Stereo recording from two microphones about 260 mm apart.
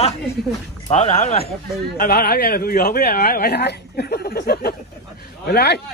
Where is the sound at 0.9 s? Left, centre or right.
Left.